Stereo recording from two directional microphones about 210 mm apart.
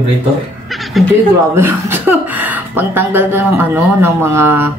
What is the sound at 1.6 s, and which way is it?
Speech, 10° right (ahead or behind).